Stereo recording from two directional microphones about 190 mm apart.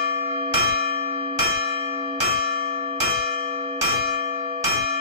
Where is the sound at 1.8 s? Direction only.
30° right (ahead or behind).